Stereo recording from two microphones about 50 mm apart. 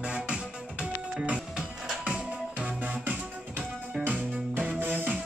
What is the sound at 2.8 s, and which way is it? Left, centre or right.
Music, right.